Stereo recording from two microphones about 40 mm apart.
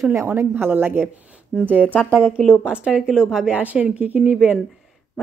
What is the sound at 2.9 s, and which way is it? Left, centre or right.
Speech, centre.